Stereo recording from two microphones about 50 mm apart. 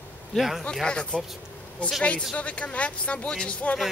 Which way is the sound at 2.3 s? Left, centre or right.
Left.